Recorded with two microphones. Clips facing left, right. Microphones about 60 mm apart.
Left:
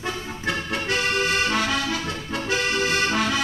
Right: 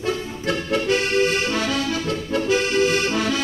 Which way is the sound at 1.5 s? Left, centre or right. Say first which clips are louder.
Right 1 dB; left.